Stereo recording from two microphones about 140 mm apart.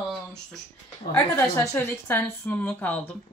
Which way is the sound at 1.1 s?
15° left (ahead or behind).